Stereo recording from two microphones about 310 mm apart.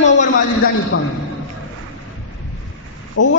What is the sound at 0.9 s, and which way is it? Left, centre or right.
Speech, left.